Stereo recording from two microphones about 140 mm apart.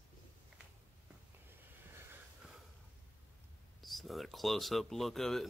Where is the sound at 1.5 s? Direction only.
15° right (ahead or behind).